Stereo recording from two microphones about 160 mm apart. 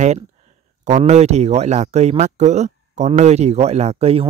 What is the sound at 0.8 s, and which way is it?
Speech, 45° right (ahead or behind).